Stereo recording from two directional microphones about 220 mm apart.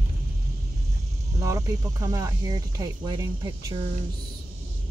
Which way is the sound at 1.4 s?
15° right (ahead or behind).